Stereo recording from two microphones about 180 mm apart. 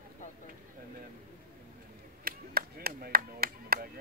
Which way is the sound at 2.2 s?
55° right (ahead or behind).